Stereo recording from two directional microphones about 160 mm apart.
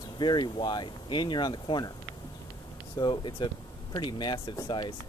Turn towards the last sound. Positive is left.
turn(degrees=30)  # may be behind; listen again after turning